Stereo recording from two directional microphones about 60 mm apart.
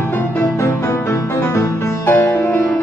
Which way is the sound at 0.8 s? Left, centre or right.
Left.